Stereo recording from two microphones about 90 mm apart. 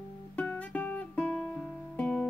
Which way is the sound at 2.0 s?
10° left (ahead or behind).